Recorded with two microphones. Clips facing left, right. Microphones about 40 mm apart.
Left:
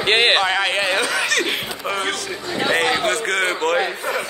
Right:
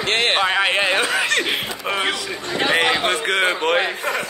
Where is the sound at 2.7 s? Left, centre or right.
Centre.